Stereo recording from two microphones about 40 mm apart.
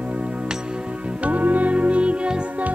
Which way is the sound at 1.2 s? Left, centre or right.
Right.